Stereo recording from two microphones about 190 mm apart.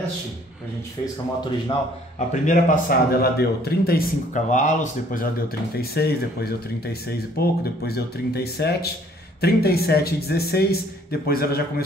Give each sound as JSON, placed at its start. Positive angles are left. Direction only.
{"t": 2.1, "sound": "a man's voice", "side_deg": 40}
{"t": 5.8, "sound": "a man's voice", "side_deg": 55}